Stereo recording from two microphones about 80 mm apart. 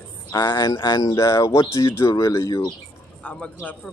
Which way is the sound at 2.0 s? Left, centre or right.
Left.